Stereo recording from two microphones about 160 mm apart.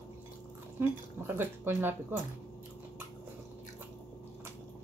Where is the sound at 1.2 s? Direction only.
15° right (ahead or behind).